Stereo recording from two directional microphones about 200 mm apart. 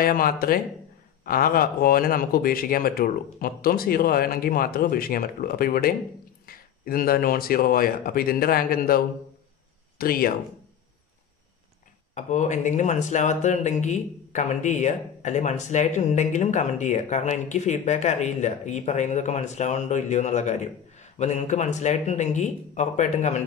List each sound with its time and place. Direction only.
0.0 s speech: 45° left (ahead or behind)
12.1 s speech: 35° left (ahead or behind)